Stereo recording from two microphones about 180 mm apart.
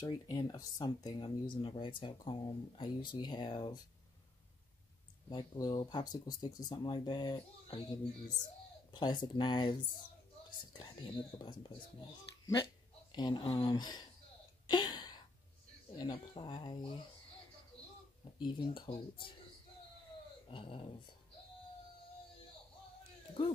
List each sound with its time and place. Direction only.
0.0 s speech: 20° left (ahead or behind)
5.3 s speech: 25° left (ahead or behind)
8.9 s speech: 25° left (ahead or behind)
13.1 s speech: 25° left (ahead or behind)
14.7 s a sound: 25° left (ahead or behind)
16.0 s speech: 25° left (ahead or behind)
18.4 s speech: 25° left (ahead or behind)
20.4 s speech: 30° left (ahead or behind)